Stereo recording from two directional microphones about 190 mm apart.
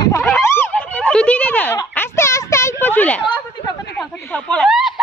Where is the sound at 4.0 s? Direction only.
5° left (ahead or behind).